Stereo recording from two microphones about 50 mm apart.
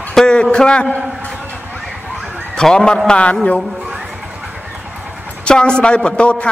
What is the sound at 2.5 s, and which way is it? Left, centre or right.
Speech, centre.